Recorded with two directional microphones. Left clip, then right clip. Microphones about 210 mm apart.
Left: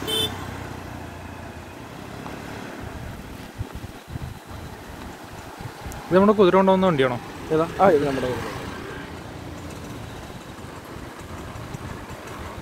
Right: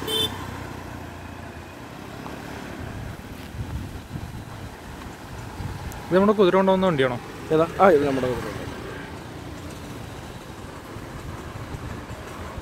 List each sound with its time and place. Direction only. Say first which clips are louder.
0.0 s vehicle: even; 15° left (ahead or behind)
6.1 s a man's voice: left 2 dB; 5° left (ahead or behind)
7.5 s speech: right 1 dB; 45° right (ahead or behind)
8.1 s speech: right 1 dB; 45° left (ahead or behind)